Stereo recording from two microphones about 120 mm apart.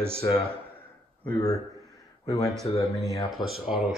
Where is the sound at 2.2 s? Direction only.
30° left (ahead or behind).